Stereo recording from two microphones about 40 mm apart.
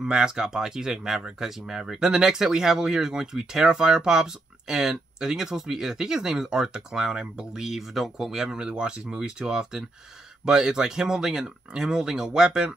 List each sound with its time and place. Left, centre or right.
0.0 s speech: centre
7.6 s speech: centre
8.5 s speech: right